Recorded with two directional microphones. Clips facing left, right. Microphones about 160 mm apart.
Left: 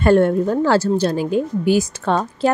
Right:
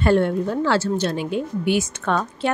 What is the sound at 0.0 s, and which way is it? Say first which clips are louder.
Speech: left 4 dB; 45° left (ahead or behind).